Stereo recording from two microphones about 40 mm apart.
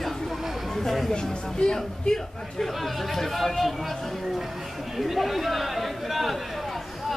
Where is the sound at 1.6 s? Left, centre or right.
Centre.